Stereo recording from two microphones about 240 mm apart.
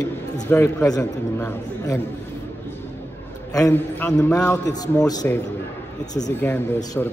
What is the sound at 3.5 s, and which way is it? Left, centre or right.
Speech, centre.